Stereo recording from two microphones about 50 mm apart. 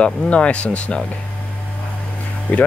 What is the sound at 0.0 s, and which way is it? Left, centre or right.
Speech, left.